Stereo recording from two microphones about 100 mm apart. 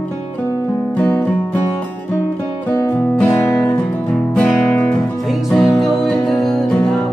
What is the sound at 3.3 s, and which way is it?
Music, 25° left (ahead or behind).